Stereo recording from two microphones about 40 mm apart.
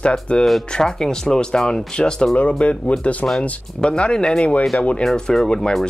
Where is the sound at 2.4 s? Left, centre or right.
Left.